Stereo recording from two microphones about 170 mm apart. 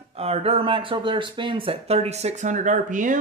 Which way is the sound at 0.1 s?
35° right (ahead or behind).